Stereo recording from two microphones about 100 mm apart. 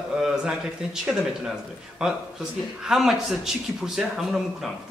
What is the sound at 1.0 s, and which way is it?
A man's voice, 10° right (ahead or behind).